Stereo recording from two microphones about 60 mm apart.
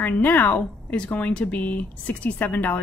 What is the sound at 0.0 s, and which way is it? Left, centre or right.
A woman's voice, left.